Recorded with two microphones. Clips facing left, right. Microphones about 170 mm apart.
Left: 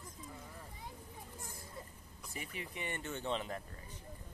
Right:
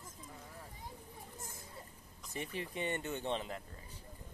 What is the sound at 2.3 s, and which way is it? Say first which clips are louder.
Speech: right 5 dB; 30° right (ahead or behind).